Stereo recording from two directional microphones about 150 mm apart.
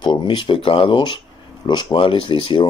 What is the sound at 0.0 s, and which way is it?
Speech, 30° left (ahead or behind).